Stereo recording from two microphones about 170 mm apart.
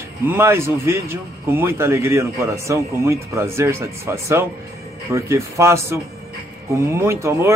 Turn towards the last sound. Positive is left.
turn(degrees=-15)  # may be behind; listen again after turning